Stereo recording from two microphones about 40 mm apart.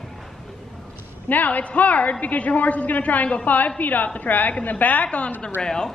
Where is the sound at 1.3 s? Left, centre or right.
Left.